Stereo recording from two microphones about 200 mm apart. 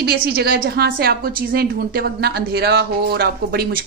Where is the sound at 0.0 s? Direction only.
50° right (ahead or behind).